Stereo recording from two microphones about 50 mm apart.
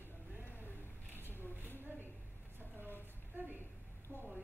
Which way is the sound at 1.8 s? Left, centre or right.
Right.